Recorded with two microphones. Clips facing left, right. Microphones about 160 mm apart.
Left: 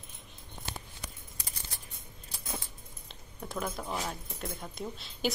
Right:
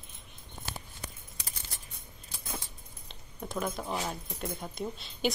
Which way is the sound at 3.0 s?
Centre (ahead or behind).